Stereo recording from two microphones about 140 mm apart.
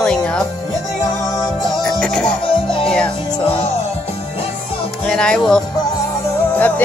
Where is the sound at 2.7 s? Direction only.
40° left (ahead or behind).